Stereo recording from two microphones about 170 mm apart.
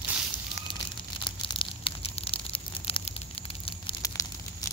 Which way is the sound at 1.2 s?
30° left (ahead or behind).